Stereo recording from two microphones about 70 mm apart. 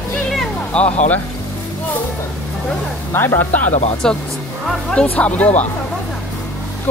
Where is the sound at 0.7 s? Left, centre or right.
Centre.